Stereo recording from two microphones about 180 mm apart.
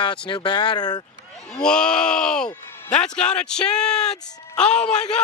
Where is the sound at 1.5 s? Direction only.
5° left (ahead or behind).